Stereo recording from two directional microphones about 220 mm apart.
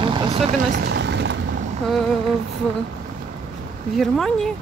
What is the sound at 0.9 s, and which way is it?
Vehicle, 50° right (ahead or behind).